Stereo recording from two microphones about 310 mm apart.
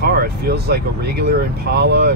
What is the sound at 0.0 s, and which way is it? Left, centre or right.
Speech, right.